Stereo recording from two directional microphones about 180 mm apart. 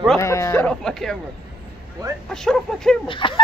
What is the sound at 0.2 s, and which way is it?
Speech, 15° left (ahead or behind).